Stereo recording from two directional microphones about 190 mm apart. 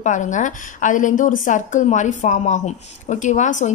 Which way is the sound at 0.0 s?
40° left (ahead or behind).